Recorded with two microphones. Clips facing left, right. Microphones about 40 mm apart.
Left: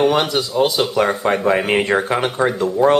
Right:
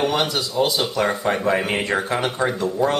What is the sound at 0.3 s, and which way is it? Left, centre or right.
Speech, left.